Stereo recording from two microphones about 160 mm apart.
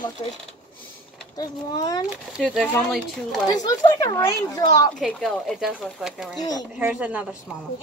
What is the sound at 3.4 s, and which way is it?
Speech, 25° left (ahead or behind).